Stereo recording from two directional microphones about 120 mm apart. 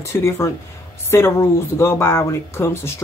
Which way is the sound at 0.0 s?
20° left (ahead or behind).